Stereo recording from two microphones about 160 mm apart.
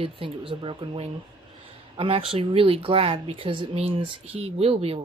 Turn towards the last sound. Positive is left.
turn(degrees=-40)  # may be behind; listen again after turning